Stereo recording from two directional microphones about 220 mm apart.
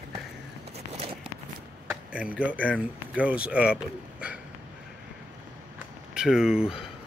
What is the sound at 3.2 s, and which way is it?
Speech, 5° right (ahead or behind).